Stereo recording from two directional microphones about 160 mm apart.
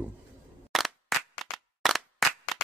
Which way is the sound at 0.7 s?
Centre (ahead or behind).